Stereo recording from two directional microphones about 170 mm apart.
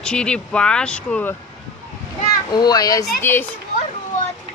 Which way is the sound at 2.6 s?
20° left (ahead or behind).